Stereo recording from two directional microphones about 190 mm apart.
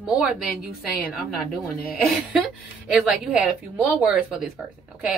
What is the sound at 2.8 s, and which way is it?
Speech, 5° right (ahead or behind).